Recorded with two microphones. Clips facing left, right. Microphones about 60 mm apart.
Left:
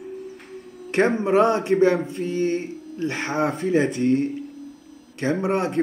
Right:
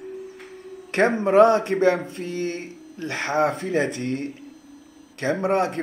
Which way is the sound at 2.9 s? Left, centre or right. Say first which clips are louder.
Right 1 dB; right.